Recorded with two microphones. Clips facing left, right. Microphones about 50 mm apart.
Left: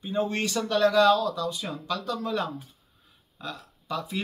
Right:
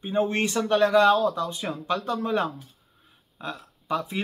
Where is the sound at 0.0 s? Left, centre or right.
Right.